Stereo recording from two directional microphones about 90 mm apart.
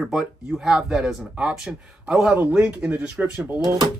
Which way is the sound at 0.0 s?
10° right (ahead or behind).